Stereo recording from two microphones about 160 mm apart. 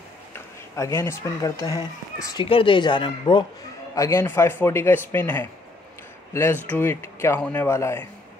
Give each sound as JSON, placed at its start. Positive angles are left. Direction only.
{"t": 0.3, "sound": "speech", "side_deg": 20}
{"t": 3.9, "sound": "speech", "side_deg": 20}